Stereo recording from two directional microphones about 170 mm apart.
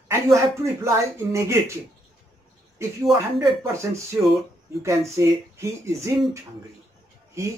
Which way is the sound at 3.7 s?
15° right (ahead or behind).